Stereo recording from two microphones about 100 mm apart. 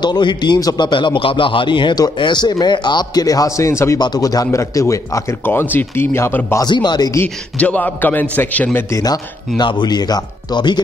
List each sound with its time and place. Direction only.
0.0 s a man's voice: 50° left (ahead or behind); by 4.0 s 30° left (ahead or behind)
4.0 s a man's voice: 40° left (ahead or behind)
5.4 s speech: 20° left (ahead or behind)
6.6 s a man's voice: 45° left (ahead or behind)
7.5 s a man's voice: 15° left (ahead or behind)
9.6 s a man's voice: 50° left (ahead or behind)